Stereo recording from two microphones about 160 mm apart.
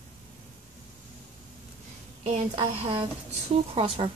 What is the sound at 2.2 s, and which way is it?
Speech, 35° right (ahead or behind).